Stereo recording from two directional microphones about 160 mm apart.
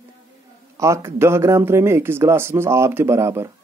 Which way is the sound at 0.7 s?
20° right (ahead or behind).